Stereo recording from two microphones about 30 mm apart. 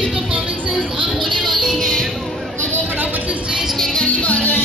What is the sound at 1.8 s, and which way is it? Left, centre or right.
Music, centre.